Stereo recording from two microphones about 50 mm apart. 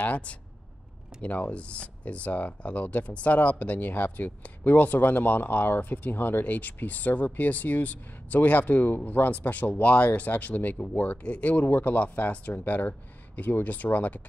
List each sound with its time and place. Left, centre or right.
0.0 s speech: left